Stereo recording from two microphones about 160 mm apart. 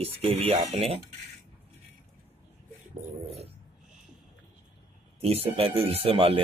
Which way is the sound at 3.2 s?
40° right (ahead or behind).